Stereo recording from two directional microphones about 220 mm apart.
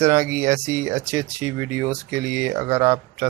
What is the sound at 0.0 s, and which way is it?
Speech, 10° right (ahead or behind).